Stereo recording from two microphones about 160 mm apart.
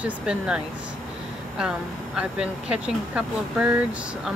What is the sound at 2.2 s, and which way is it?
Speech, 5° right (ahead or behind).